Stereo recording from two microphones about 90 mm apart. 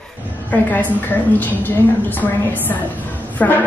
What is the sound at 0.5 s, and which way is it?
A woman's voice, 20° left (ahead or behind).